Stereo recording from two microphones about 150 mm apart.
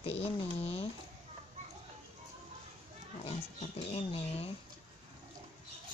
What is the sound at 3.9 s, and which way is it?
Speech, 40° left (ahead or behind).